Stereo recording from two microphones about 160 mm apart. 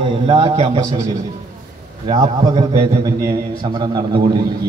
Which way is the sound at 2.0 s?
45° right (ahead or behind).